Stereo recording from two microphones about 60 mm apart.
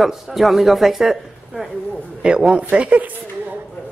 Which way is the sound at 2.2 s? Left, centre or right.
Centre.